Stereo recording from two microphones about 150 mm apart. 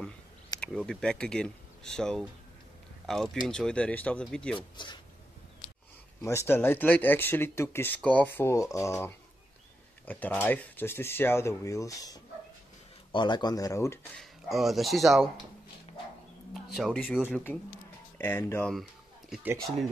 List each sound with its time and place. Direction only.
0.6 s speech: 5° left (ahead or behind)
4.6 s speech: 30° left (ahead or behind)
6.2 s speech: 15° left (ahead or behind)
14.1 s speech: centre (ahead or behind)
16.7 s speech: centre (ahead or behind)
18.1 s speech: 15° left (ahead or behind)
18.7 s a sound: centre (ahead or behind)